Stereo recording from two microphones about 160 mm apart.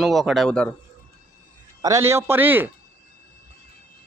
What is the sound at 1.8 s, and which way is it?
Speech, 20° right (ahead or behind).